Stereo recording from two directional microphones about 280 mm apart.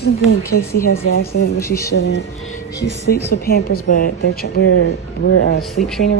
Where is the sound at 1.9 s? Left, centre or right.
Left.